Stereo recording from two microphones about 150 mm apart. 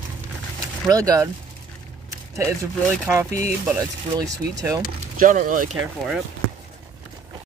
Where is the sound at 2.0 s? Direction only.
20° right (ahead or behind).